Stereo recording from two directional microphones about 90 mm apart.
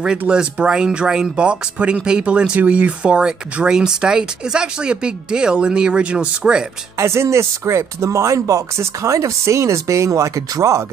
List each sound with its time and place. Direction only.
0.2 s speech: 10° right (ahead or behind)
7.0 s speech: 30° right (ahead or behind)